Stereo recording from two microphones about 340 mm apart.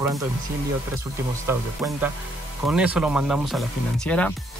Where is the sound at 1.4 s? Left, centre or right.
Centre.